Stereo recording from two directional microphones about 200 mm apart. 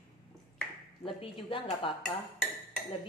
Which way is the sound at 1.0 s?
25° left (ahead or behind).